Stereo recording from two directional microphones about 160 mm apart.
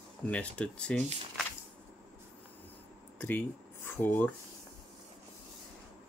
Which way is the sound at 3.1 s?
10° left (ahead or behind).